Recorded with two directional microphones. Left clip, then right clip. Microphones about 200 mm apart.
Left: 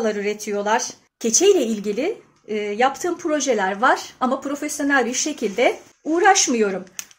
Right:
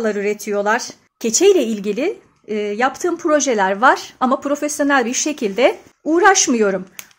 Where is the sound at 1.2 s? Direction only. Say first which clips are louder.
Right 3 dB; 35° right (ahead or behind).